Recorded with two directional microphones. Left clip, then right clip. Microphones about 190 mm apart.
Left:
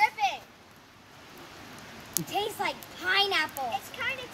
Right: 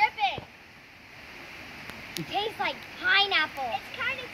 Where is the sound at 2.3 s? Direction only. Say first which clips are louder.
Right 1 dB; 10° left (ahead or behind).